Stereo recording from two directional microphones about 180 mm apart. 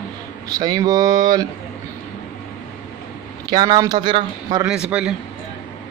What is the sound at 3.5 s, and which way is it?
Speech, 25° right (ahead or behind).